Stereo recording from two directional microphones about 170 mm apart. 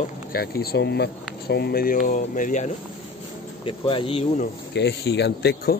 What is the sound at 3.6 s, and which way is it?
Speech, 30° left (ahead or behind).